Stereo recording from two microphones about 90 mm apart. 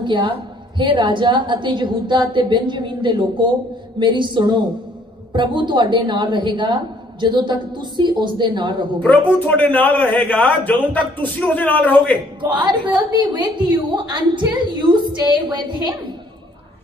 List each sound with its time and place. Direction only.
0.0 s a woman's voice: 60° right (ahead or behind)
9.5 s a man's voice: 20° left (ahead or behind)
12.5 s a woman's voice: 55° right (ahead or behind)